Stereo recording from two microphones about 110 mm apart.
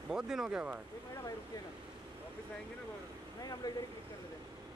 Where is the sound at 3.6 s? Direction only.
35° left (ahead or behind).